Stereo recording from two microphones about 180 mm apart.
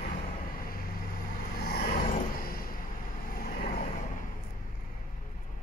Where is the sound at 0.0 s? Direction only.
55° left (ahead or behind).